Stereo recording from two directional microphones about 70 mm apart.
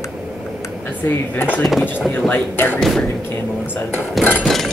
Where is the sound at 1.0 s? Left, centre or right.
Left.